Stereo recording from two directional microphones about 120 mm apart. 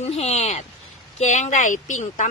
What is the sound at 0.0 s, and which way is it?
Speech, 65° left (ahead or behind).